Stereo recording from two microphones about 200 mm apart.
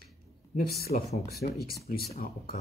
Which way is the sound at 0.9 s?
35° left (ahead or behind).